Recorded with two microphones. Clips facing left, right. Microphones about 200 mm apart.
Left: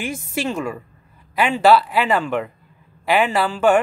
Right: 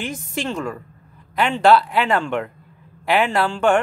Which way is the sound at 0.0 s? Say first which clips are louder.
Left 2 dB; 10° left (ahead or behind).